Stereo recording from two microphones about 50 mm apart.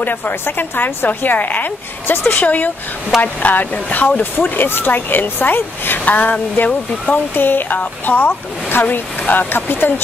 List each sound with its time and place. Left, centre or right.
0.0 s speech: left
2.3 s speech: left
7.3 s speech: left